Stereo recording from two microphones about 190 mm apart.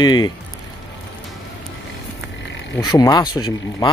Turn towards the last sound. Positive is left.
turn(degrees=25)  # may be behind; listen again after turning